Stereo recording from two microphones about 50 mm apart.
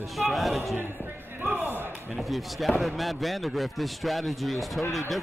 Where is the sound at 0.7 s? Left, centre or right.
Right.